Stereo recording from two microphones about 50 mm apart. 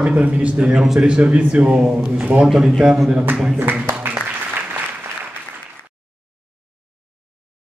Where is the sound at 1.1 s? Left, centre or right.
Right.